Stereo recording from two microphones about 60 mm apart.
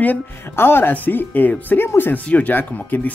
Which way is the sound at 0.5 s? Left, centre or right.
Left.